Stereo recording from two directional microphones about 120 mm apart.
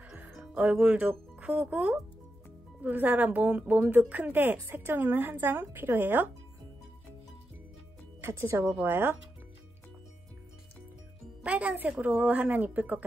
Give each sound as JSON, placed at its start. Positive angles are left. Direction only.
{"t": 0.2, "sound": "a woman's voice", "side_deg": -15}
{"t": 8.2, "sound": "a woman's voice", "side_deg": -20}
{"t": 11.4, "sound": "a woman's voice", "side_deg": -10}